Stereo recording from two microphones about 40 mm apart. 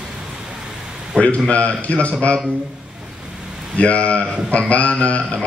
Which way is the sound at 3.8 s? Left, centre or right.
Left.